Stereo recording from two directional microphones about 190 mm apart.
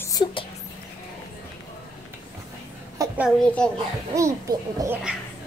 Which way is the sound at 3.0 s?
20° right (ahead or behind).